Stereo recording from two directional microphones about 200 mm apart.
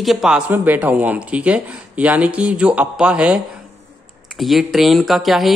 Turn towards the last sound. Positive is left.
turn(degrees=0)  # may be behind; listen again after turning